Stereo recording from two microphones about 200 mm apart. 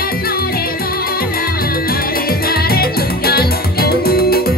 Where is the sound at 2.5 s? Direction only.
50° left (ahead or behind).